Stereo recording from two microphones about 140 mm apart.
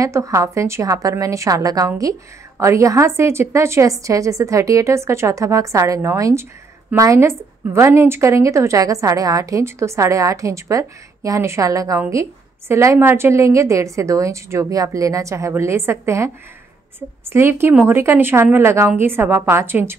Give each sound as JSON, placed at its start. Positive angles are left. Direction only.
{"t": 0.0, "sound": "a woman's voice", "side_deg": -20}
{"t": 17.3, "sound": "speech", "side_deg": -15}